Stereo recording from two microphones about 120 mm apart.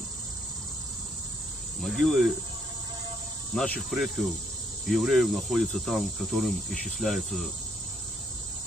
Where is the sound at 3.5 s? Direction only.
10° left (ahead or behind).